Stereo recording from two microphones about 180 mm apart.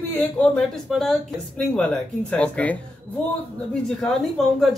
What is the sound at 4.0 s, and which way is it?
Speech, centre (ahead or behind).